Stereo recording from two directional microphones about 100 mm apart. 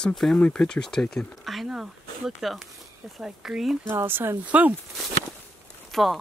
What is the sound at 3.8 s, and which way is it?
Speech, 25° right (ahead or behind).